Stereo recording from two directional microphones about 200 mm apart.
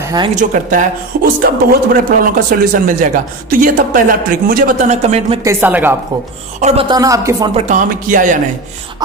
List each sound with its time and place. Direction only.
0.0 s speech: 20° right (ahead or behind)
0.4 s speech: 40° right (ahead or behind)
5.4 s speech: 10° right (ahead or behind)
6.6 s speech: 35° right (ahead or behind)
6.9 s speech: 15° right (ahead or behind)
7.5 s speech: 40° right (ahead or behind)